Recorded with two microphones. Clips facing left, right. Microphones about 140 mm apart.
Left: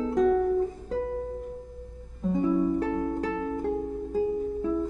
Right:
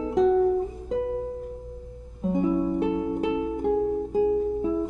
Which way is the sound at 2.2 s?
20° right (ahead or behind).